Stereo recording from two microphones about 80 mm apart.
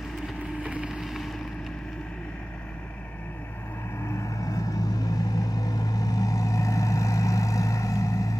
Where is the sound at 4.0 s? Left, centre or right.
Left.